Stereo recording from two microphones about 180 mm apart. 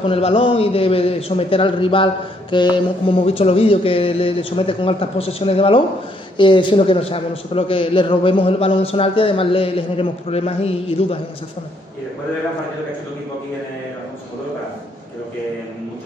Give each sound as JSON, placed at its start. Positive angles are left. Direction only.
{"t": 0.1, "sound": "a man's voice", "side_deg": 30}